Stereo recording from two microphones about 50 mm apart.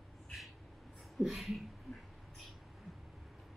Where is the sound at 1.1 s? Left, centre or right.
Centre.